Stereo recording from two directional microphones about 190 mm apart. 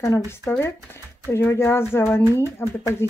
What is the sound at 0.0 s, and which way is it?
Speech, 15° left (ahead or behind).